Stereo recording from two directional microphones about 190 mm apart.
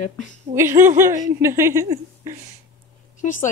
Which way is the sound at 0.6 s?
15° right (ahead or behind).